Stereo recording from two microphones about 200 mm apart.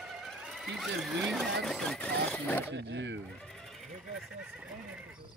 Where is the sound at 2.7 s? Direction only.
65° right (ahead or behind).